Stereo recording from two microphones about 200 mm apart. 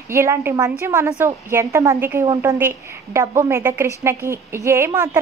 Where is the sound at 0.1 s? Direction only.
15° right (ahead or behind).